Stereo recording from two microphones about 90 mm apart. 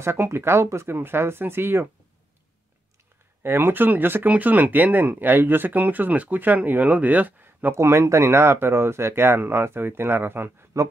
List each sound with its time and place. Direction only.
0.0 s speech: 30° right (ahead or behind)
3.4 s speech: 25° right (ahead or behind)